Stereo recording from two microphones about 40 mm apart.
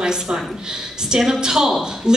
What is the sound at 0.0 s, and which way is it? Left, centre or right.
A woman's voice, centre.